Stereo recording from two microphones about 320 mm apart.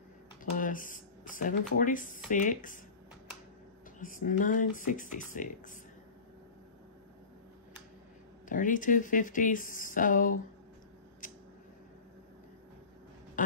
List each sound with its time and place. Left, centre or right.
0.6 s speech: left
4.0 s speech: left
8.5 s speech: left